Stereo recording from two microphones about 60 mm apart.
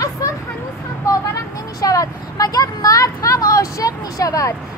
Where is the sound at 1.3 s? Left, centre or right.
Left.